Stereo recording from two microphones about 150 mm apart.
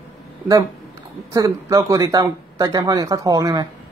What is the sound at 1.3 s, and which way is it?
Speech, 20° right (ahead or behind).